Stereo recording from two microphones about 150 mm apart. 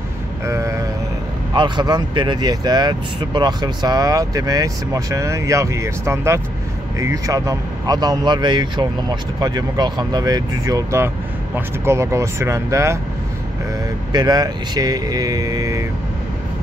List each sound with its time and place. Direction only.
0.5 s a sound: 20° right (ahead or behind)
1.5 s speech: 30° right (ahead or behind)
14.1 s speech: 25° right (ahead or behind)